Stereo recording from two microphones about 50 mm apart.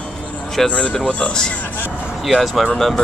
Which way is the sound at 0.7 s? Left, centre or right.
Left.